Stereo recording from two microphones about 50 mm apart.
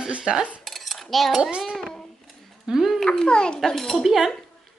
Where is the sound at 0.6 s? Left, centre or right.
Centre.